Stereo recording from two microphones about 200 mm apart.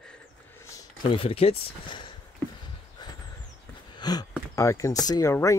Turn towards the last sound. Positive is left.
turn(degrees=15)  # may be behind; listen again after turning